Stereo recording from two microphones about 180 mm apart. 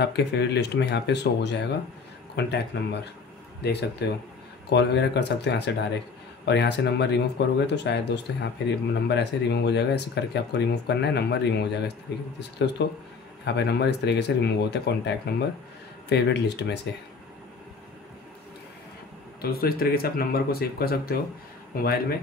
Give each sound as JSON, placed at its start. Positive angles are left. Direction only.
{"t": 0.0, "sound": "speech", "side_deg": 70}
{"t": 4.0, "sound": "speech", "side_deg": 70}
{"t": 19.4, "sound": "speech", "side_deg": 55}